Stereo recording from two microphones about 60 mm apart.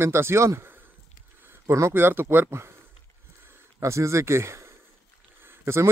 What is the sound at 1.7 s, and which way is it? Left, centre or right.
Speech, right.